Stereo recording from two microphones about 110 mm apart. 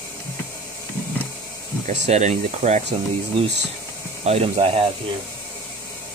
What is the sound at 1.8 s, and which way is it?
Speech, 90° right.